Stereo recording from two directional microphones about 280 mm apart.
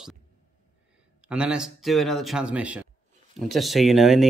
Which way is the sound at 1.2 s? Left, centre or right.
Centre.